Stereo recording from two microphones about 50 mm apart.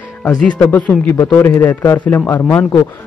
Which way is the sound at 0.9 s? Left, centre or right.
Left.